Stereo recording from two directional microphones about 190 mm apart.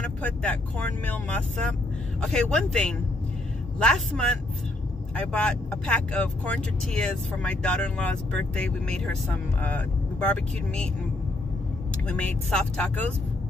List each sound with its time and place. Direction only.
0.0 s speech: 5° left (ahead or behind)
12.1 s speech: 5° left (ahead or behind)